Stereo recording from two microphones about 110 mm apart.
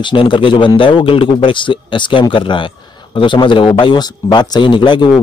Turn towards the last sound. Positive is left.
turn(degrees=45)  # may be behind; listen again after turning